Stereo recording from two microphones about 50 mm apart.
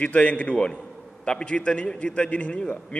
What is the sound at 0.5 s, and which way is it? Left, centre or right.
A man's voice, centre.